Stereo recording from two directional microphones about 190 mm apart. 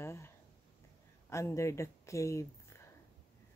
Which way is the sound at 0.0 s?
15° left (ahead or behind).